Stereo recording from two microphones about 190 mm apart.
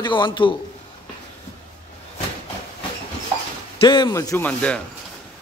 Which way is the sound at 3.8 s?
25° left (ahead or behind).